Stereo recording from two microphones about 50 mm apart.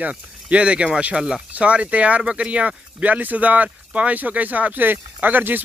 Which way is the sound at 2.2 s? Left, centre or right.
Centre.